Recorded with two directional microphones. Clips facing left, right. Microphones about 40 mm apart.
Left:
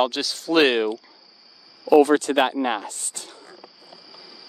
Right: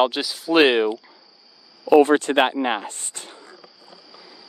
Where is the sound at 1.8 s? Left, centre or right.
Right.